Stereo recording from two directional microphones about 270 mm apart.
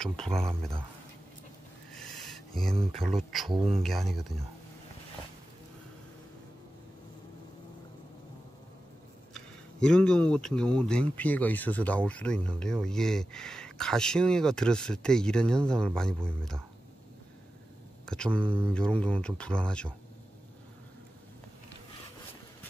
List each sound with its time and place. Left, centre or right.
0.0 s speech: centre
2.0 s a sound: centre
2.9 s speech: centre
3.5 s speech: right
3.8 s speech: centre
9.3 s speech: centre
18.0 s speech: centre